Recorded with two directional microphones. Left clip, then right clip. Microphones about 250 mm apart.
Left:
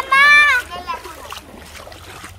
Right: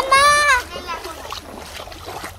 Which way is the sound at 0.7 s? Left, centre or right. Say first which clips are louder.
Left 1 dB; centre.